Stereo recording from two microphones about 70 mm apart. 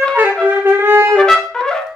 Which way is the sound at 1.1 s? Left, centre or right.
Centre.